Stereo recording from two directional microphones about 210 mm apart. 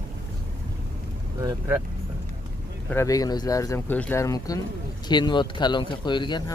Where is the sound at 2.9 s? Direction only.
15° left (ahead or behind).